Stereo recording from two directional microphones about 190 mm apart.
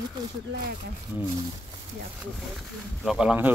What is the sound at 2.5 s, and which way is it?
Speech, centre (ahead or behind).